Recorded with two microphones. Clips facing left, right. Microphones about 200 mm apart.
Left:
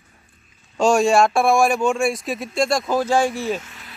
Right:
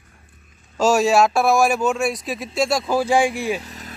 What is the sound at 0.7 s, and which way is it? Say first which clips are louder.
Speech: even; 5° right (ahead or behind).